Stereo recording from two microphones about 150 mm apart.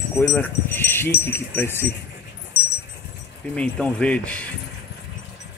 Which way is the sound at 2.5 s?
90° left.